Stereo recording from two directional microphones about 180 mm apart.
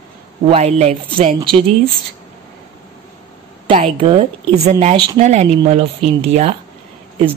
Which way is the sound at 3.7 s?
30° right (ahead or behind).